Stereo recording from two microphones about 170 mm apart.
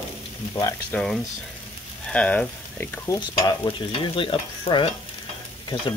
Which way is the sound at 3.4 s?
30° left (ahead or behind).